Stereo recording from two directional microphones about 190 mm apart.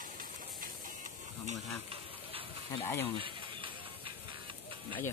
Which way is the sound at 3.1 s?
25° right (ahead or behind).